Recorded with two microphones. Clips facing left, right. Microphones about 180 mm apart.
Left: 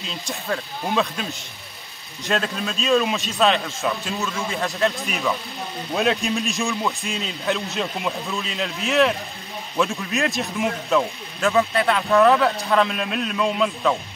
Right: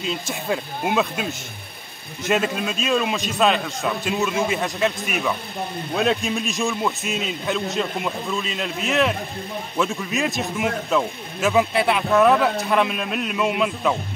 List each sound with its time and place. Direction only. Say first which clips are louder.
0.5 s speech: right 2 dB; 10° right (ahead or behind)
2.2 s a man's voice: right 3 dB; 5° right (ahead or behind)
4.5 s speech: right 2 dB; 15° right (ahead or behind)
4.7 s a man's voice: even; centre (ahead or behind)
11.5 s a man's voice: right 1 dB; 10° right (ahead or behind)